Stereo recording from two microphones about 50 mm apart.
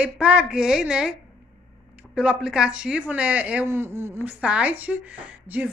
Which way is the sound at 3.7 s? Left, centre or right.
Right.